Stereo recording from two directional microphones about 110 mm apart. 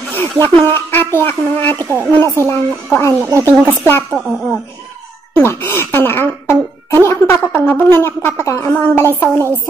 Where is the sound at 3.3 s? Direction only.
30° right (ahead or behind).